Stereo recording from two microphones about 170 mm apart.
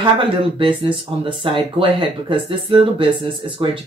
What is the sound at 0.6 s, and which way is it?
Speech, 30° right (ahead or behind).